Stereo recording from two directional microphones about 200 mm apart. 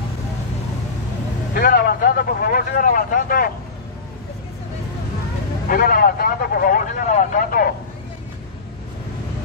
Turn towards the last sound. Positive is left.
turn(degrees=45)  # may be behind; listen again after turning